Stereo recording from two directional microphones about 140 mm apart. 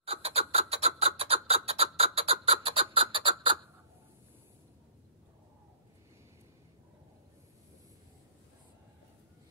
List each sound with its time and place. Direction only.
0.0 s chicken: 45° right (ahead or behind)